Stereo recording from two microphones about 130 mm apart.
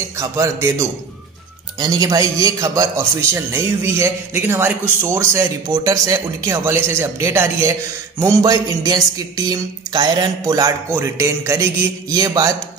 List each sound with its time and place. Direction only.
0.2 s a man's voice: 25° right (ahead or behind)